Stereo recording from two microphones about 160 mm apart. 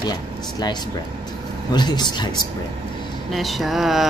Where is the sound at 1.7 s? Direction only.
25° left (ahead or behind).